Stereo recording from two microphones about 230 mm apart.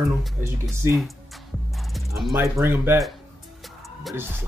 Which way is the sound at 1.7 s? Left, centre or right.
Centre.